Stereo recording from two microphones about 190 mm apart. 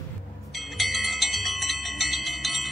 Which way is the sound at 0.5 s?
Centre (ahead or behind).